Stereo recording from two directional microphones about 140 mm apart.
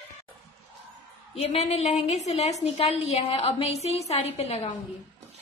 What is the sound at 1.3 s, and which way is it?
A woman's voice, 50° left (ahead or behind).